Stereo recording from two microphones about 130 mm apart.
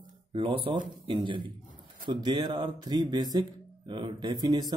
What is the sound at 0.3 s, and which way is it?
Speech, 45° right (ahead or behind).